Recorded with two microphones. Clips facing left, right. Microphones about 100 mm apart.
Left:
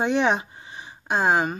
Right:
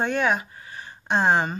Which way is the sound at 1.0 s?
5° left (ahead or behind).